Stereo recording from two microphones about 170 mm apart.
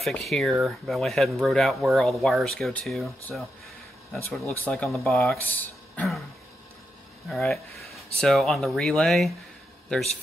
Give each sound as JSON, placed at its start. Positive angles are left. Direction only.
{"t": 0.0, "sound": "speech", "side_deg": 0}
{"t": 4.1, "sound": "speech", "side_deg": 0}
{"t": 5.9, "sound": "throat clearing", "side_deg": 0}
{"t": 7.2, "sound": "speech", "side_deg": 0}